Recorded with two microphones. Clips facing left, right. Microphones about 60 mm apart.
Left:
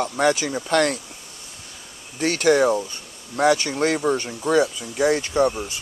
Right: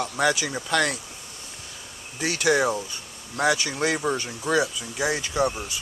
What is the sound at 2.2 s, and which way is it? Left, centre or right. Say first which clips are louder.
Speech: left 5 dB; left.